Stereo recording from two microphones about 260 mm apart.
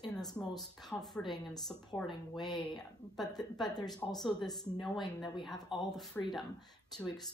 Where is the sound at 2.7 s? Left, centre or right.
Centre.